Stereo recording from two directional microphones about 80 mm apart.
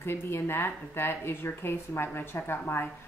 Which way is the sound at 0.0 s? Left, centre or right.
Left.